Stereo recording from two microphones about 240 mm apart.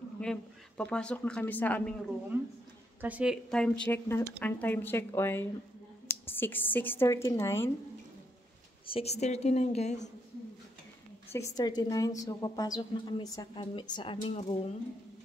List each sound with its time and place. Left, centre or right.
0.2 s a woman's voice: centre
2.3 s a woman's voice: centre
8.8 s a woman's voice: left
11.3 s a woman's voice: centre